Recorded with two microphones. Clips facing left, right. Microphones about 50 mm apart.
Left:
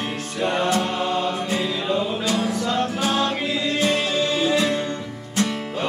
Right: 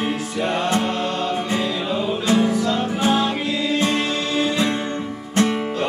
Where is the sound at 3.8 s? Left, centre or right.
Centre.